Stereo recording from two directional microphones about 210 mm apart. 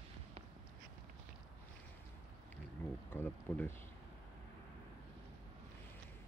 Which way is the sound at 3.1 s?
10° left (ahead or behind).